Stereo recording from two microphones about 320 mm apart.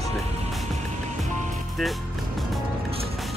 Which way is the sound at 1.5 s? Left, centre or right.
Centre.